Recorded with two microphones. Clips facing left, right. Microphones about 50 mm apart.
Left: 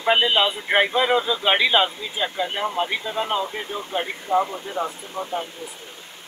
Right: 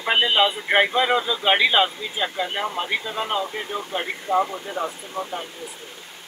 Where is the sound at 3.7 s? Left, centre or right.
Centre.